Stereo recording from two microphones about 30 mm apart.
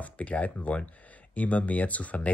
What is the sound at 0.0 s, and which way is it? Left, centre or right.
Speech, left.